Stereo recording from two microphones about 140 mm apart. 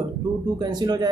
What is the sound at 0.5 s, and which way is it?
Speech, 30° right (ahead or behind).